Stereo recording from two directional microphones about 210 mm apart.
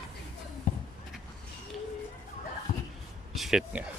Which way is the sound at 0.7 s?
40° left (ahead or behind).